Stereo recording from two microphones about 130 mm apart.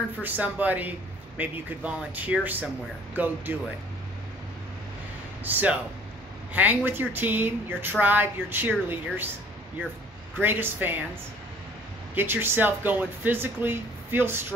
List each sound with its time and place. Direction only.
0.2 s a man's voice: 10° right (ahead or behind)
5.4 s a man's voice: 15° right (ahead or behind)
10.4 s a man's voice: 15° right (ahead or behind)
12.2 s a man's voice: 15° right (ahead or behind)